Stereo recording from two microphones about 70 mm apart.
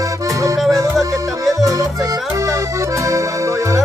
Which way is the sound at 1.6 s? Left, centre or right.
Right.